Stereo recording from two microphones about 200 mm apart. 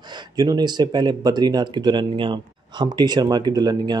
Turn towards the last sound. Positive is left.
turn(degrees=-20)  # may be behind; listen again after turning